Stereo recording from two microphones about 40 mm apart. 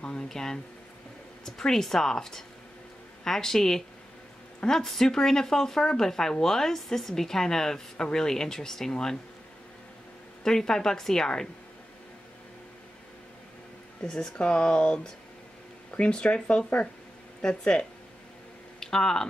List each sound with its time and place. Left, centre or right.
0.3 s speech: centre
10.4 s speech: centre
14.0 s speech: centre
16.0 s speech: left
18.8 s a sound: centre